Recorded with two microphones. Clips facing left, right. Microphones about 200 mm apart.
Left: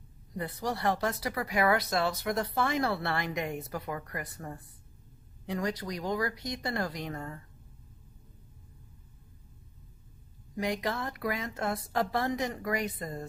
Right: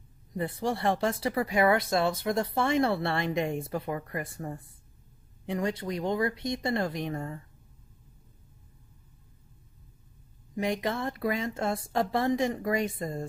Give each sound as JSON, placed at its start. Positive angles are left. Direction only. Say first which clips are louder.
{"t": 0.3, "sound": "speech", "louder": "right 4 dB", "side_deg": -25}
{"t": 10.5, "sound": "speech", "louder": "right 2 dB", "side_deg": -25}